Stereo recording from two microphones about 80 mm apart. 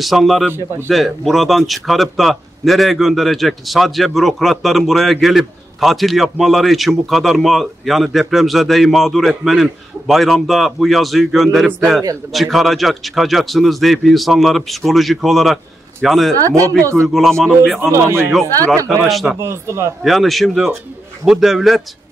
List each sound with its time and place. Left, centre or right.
0.0 s a man's voice: centre
16.3 s speech: right
17.1 s a man's voice: centre
17.7 s speech: right
19.0 s a man's voice: centre
19.4 s speech: right
20.0 s a man's voice: centre